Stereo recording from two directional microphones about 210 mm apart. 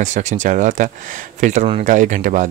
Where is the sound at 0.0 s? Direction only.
35° right (ahead or behind).